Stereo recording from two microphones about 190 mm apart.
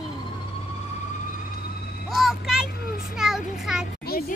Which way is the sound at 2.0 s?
Centre (ahead or behind).